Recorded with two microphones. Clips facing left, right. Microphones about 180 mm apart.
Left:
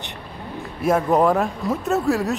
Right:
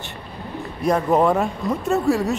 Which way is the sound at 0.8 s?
5° left (ahead or behind).